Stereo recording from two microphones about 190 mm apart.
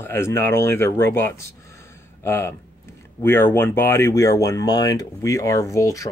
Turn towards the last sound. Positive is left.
turn(degrees=15)  # may be behind; listen again after turning